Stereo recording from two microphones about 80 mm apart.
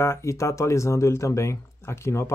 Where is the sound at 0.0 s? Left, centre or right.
Left.